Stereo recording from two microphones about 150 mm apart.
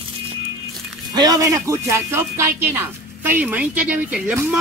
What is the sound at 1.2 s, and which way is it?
A woman's voice, 25° right (ahead or behind).